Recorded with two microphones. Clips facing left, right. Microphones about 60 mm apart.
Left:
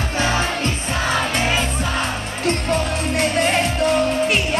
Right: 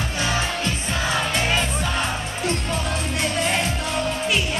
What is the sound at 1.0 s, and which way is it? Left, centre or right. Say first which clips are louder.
Music: left 3 dB; left.